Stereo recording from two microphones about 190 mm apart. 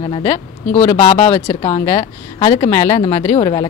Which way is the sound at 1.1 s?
35° left (ahead or behind).